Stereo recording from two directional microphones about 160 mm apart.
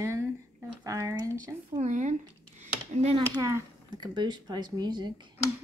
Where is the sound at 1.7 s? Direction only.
50° right (ahead or behind).